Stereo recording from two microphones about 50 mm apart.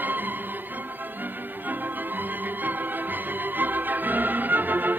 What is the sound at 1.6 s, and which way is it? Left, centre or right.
Music, right.